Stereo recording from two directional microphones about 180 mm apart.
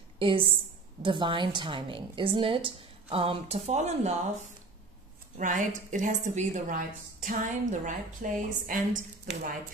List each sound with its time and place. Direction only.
0.2 s a woman's voice: 30° right (ahead or behind)
5.4 s a woman's voice: 45° right (ahead or behind)